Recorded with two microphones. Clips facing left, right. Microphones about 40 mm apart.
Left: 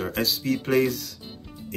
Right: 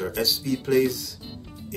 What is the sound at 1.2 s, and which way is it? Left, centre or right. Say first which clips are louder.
Music: right 1 dB; centre.